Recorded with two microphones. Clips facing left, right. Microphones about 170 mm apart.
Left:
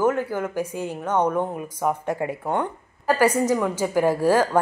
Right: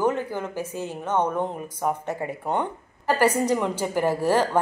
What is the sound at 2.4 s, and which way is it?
Speech, 15° right (ahead or behind).